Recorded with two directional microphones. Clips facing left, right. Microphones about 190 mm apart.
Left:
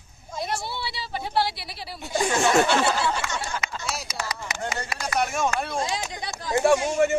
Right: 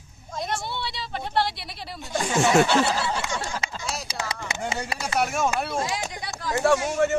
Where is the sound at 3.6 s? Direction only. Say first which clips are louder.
Even; 30° right (ahead or behind).